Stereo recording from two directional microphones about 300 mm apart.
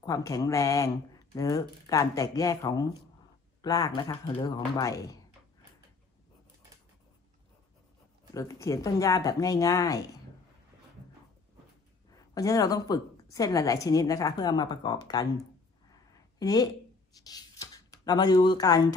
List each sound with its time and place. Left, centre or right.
0.0 s speech: centre
8.3 s speech: centre
12.4 s speech: centre
16.3 s a woman's voice: centre